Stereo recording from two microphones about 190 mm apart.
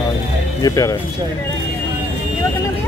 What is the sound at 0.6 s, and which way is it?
Speech, 20° left (ahead or behind).